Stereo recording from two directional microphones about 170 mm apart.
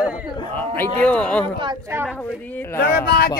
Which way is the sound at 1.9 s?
15° right (ahead or behind).